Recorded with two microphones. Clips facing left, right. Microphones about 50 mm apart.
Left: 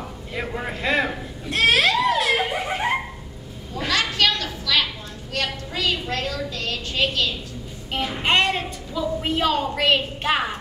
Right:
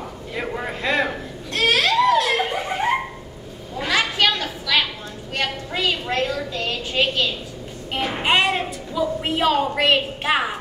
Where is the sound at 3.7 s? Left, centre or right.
Centre.